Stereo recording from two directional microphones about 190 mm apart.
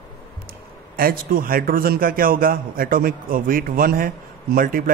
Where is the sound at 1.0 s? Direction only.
50° right (ahead or behind).